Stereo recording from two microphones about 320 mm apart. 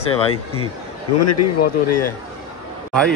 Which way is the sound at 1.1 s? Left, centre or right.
Left.